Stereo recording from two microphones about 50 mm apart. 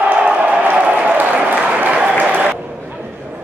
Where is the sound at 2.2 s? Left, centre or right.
Right.